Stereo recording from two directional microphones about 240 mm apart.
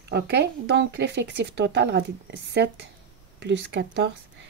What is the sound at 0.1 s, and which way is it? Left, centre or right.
Speech, right.